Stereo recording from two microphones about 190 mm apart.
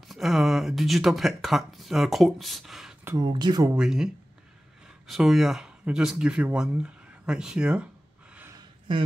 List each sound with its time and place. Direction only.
0.1 s speech: centre (ahead or behind)
3.1 s speech: 20° right (ahead or behind)
3.7 s speech: 5° right (ahead or behind)